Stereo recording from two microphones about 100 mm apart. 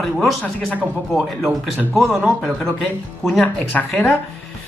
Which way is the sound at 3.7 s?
15° left (ahead or behind).